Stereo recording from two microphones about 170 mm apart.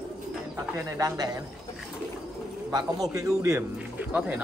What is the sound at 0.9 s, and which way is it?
Speech, 20° right (ahead or behind).